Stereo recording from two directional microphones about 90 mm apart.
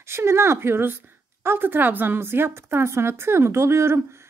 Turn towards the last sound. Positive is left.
turn(degrees=-30)  # may be behind; listen again after turning